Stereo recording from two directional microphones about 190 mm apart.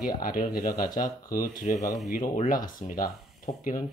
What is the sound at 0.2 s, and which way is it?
Speech, 50° left (ahead or behind).